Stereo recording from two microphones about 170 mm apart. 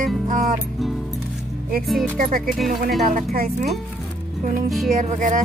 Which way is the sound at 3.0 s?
60° right (ahead or behind).